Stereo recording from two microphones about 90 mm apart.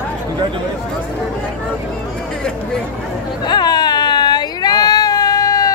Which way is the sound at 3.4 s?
50° left (ahead or behind).